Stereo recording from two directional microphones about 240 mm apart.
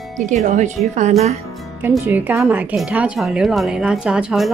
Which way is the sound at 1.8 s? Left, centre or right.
Centre.